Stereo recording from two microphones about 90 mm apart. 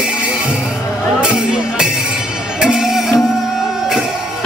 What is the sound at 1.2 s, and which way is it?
Music, 10° right (ahead or behind).